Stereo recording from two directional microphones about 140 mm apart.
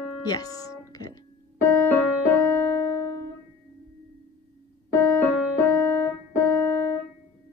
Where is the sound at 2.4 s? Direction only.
15° left (ahead or behind).